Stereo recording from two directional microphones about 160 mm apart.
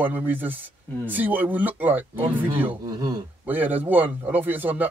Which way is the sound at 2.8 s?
25° right (ahead or behind).